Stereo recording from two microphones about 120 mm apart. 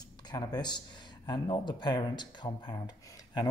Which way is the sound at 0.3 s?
35° left (ahead or behind).